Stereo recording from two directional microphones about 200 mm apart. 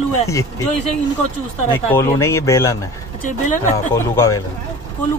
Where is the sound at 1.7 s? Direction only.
10° left (ahead or behind).